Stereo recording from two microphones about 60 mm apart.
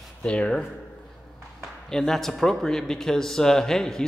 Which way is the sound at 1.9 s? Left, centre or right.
Centre.